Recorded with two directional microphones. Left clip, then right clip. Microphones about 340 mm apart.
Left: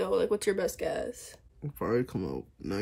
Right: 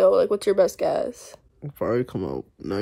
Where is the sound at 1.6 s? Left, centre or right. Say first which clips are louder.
Right 6 dB; centre.